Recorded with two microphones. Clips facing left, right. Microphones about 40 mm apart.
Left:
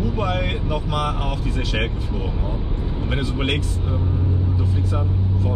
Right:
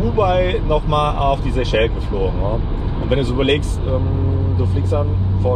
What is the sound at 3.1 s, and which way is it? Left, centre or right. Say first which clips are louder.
Speech: right 8 dB; centre.